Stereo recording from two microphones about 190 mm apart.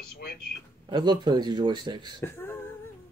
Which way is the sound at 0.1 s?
55° left (ahead or behind).